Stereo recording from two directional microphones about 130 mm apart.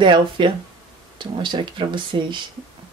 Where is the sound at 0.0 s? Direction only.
40° right (ahead or behind).